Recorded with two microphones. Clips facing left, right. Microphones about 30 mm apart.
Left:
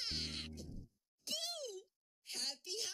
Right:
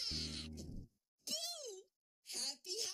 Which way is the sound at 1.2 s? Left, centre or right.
Left.